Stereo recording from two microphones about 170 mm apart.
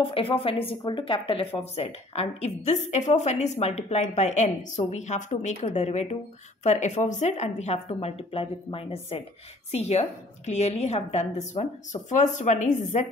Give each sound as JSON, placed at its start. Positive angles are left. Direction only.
{"t": 0.0, "sound": "a woman's voice", "side_deg": 30}